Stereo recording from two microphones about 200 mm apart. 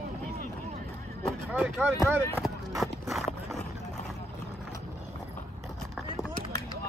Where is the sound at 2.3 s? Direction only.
Centre (ahead or behind).